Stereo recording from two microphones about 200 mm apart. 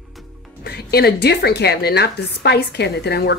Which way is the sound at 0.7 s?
55° left (ahead or behind).